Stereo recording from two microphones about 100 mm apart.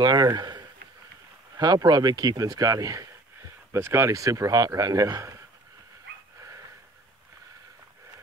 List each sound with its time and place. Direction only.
0.0 s speech: 45° right (ahead or behind)